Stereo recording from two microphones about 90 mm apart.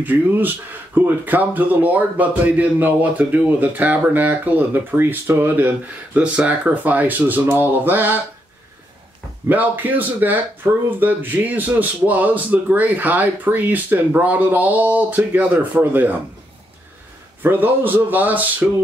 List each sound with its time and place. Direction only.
0.0 s speech: 20° right (ahead or behind)
9.5 s speech: 20° right (ahead or behind)
17.4 s speech: 20° right (ahead or behind)